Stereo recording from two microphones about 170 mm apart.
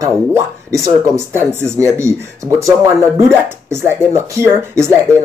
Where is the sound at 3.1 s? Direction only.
15° right (ahead or behind).